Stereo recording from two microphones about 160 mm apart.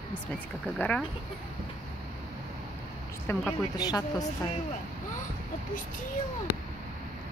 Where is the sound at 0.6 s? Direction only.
5° left (ahead or behind).